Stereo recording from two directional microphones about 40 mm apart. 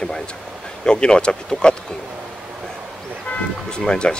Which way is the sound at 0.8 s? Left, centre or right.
Left.